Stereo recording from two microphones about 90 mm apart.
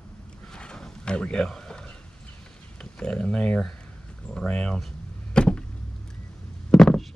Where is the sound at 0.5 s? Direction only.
10° left (ahead or behind).